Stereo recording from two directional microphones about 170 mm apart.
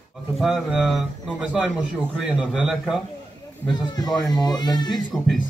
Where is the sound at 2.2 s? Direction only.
5° right (ahead or behind).